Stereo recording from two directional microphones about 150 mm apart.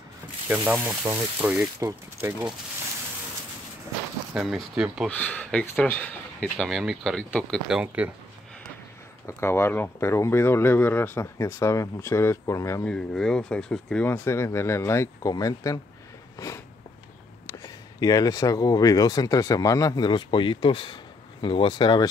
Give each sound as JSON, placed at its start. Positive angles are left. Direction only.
{"t": 0.5, "sound": "speech", "side_deg": -10}
{"t": 4.3, "sound": "speech", "side_deg": -5}
{"t": 5.1, "sound": "speech", "side_deg": 10}
{"t": 6.6, "sound": "speech", "side_deg": 0}
{"t": 9.4, "sound": "speech", "side_deg": 15}
{"t": 12.8, "sound": "speech", "side_deg": 5}
{"t": 16.3, "sound": "a sound", "side_deg": 20}
{"t": 17.5, "sound": "speech", "side_deg": 25}